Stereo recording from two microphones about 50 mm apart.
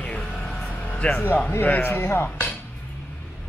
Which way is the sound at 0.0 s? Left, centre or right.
Left.